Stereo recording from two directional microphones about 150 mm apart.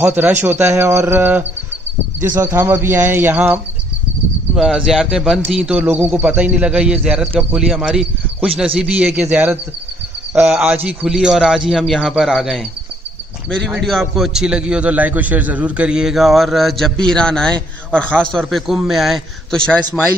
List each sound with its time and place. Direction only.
0.0 s speech: 10° right (ahead or behind)
4.6 s a man's voice: centre (ahead or behind)
13.7 s a man's voice: centre (ahead or behind)